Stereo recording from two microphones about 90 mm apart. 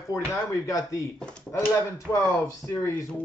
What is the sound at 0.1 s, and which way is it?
Speech, 35° left (ahead or behind).